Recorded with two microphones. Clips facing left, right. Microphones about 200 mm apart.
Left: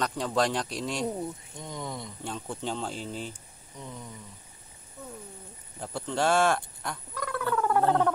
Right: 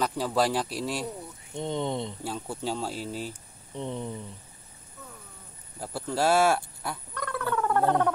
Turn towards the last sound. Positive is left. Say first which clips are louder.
# even
turn(degrees=0)  # may be behind; listen again after turning